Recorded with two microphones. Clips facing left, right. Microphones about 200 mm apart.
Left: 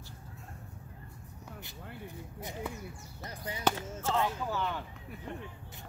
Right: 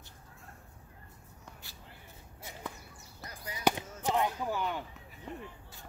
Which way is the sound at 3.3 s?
25° left (ahead or behind).